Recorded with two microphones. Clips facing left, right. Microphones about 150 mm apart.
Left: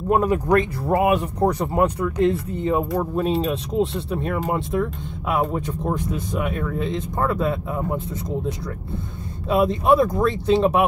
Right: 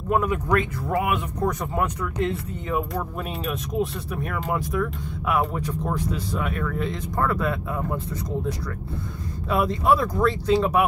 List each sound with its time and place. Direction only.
0.1 s speech: 35° left (ahead or behind)